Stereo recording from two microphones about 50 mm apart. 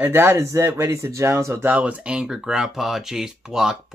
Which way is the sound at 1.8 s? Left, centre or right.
Right.